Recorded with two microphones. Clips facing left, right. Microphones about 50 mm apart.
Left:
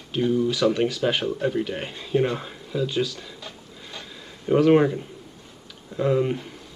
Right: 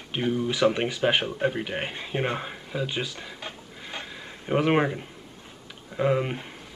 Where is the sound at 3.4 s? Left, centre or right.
Right.